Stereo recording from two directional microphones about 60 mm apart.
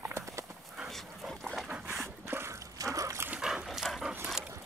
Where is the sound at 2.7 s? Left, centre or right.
Right.